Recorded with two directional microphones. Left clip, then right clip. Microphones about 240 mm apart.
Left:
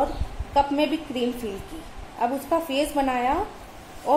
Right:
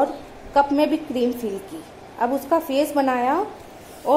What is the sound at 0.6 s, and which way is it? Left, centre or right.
A woman's voice, right.